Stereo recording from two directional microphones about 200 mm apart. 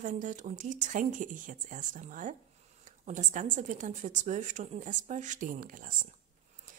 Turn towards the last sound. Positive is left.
turn(degrees=-45)  # may be behind; listen again after turning